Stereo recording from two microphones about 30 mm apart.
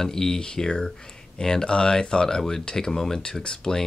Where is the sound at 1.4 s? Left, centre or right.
Left.